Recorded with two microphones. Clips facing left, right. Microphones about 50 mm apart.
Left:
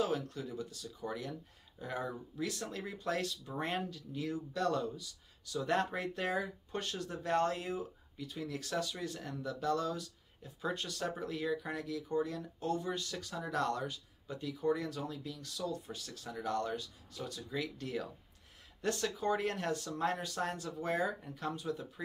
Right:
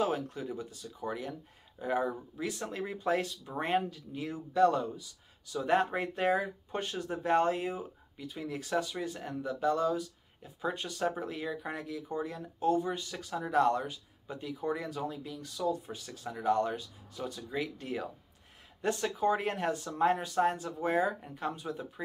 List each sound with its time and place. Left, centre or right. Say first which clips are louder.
0.0 s speech: right 3 dB; right